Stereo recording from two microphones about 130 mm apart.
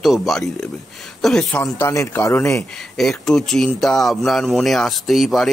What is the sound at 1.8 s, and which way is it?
Speech, 20° left (ahead or behind).